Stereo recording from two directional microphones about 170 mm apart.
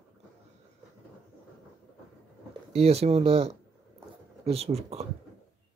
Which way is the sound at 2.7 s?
35° right (ahead or behind).